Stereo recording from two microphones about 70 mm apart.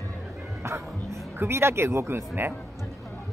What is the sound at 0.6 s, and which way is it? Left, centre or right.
Music, right.